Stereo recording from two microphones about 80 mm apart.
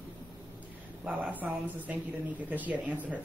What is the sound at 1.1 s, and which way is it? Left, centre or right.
A woman's voice, centre.